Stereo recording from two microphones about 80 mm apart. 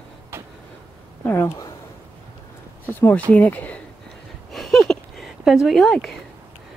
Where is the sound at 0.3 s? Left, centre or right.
Right.